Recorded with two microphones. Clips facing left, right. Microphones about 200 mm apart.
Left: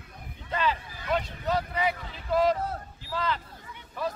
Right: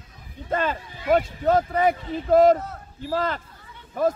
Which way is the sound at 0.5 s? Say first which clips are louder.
Right 4 dB; 50° right (ahead or behind).